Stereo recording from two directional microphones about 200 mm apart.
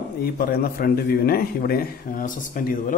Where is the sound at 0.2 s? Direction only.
50° left (ahead or behind).